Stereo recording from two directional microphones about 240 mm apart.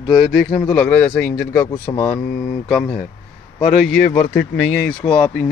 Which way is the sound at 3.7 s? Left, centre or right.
Centre.